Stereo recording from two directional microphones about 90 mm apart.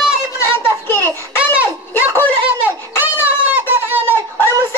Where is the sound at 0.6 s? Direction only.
25° left (ahead or behind).